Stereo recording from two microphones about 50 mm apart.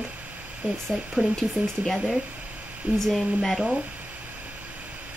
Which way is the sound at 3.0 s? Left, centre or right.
Centre.